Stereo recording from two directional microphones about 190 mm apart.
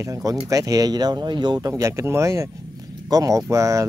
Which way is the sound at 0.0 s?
15° right (ahead or behind).